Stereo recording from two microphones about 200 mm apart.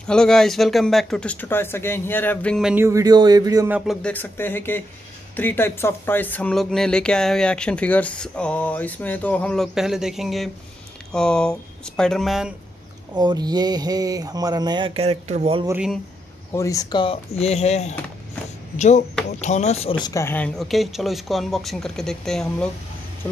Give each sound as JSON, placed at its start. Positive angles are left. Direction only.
{"t": 0.0, "sound": "speech", "side_deg": 5}
{"t": 2.7, "sound": "speech", "side_deg": -15}
{"t": 13.1, "sound": "speech", "side_deg": -20}
{"t": 15.6, "sound": "speech", "side_deg": -10}
{"t": 16.5, "sound": "speech", "side_deg": 15}